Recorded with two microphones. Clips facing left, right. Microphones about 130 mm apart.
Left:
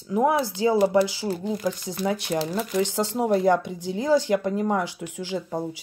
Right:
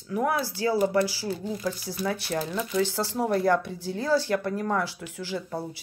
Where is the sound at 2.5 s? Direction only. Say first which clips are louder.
Left 3 dB; 40° left (ahead or behind).